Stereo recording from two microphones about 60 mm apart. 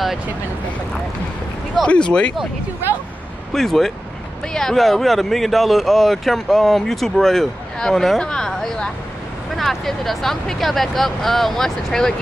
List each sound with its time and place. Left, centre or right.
1.8 s speech: centre
3.5 s speech: centre